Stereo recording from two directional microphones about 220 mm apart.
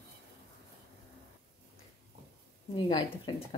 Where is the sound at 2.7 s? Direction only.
20° left (ahead or behind).